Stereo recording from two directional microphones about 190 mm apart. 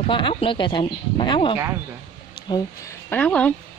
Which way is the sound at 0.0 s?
30° left (ahead or behind).